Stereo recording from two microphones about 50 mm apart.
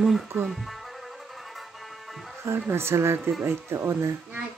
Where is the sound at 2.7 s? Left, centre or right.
Right.